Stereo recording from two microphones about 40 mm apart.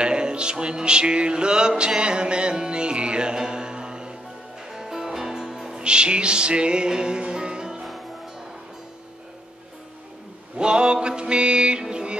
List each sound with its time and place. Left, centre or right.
0.0 s music: right
4.6 s music: centre
5.8 s music: right
10.6 s music: right